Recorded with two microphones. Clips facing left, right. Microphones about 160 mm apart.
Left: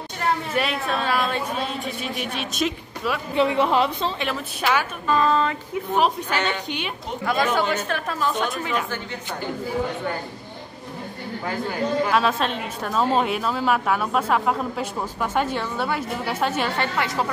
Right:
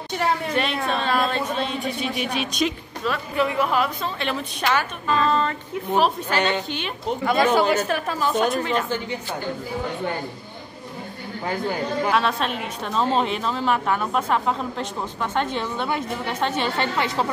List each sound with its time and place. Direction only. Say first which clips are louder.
0.5 s a woman's voice: right 1 dB; 5° left (ahead or behind)
3.3 s a woman's voice: left 3 dB; 25° left (ahead or behind)
4.2 s speech: right 1 dB; 5° left (ahead or behind)
7.2 s a woman's voice: right 3 dB; centre (ahead or behind)
12.1 s a woman's voice: left 1 dB; centre (ahead or behind)
16.7 s a woman's voice: right 1 dB; 25° right (ahead or behind)